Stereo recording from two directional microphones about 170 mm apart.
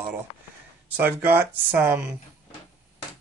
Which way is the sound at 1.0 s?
10° right (ahead or behind).